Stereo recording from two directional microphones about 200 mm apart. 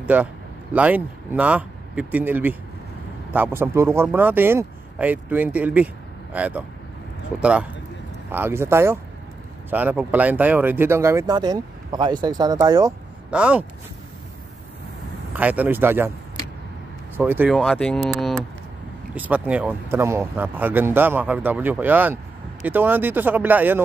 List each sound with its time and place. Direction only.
0.0 s speech: 5° right (ahead or behind)
8.3 s speech: 10° right (ahead or behind)
13.3 s speech: 5° right (ahead or behind)
15.3 s speech: 10° right (ahead or behind)
17.2 s speech: 10° right (ahead or behind)